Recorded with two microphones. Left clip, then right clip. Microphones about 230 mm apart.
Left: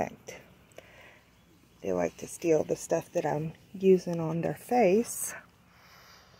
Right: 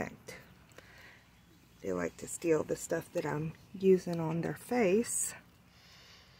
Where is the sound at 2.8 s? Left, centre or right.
Right.